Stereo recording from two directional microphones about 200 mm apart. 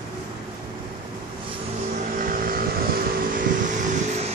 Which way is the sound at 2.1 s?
45° right (ahead or behind).